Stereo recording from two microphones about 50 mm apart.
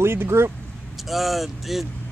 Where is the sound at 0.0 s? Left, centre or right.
Right.